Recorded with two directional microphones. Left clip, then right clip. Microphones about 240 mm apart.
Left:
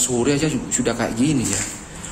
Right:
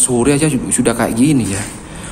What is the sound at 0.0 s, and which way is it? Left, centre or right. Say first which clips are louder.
A man's voice: right 6 dB; centre.